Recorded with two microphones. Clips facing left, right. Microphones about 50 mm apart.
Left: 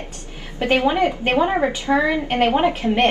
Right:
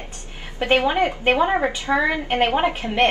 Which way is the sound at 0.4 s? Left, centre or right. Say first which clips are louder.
Even; right.